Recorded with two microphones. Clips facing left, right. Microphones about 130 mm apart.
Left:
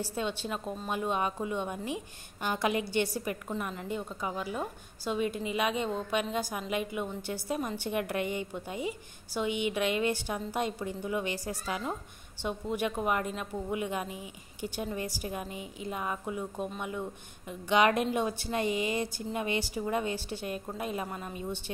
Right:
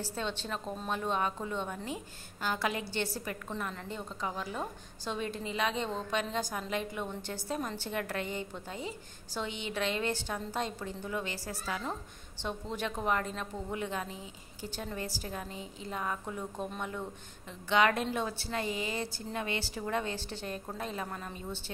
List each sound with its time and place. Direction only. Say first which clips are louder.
0.0 s a woman's voice: left 3 dB; 10° left (ahead or behind)